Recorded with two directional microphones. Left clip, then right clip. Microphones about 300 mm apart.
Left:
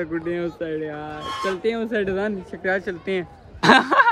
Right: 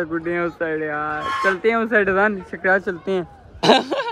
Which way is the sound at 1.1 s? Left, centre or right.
Centre.